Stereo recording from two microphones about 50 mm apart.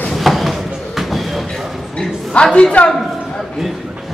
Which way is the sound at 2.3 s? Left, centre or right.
Centre.